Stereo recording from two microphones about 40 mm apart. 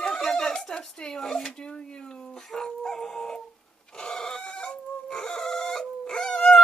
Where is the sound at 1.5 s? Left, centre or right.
Left.